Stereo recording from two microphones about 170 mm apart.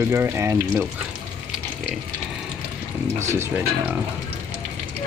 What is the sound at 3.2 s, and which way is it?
Speech, 15° right (ahead or behind).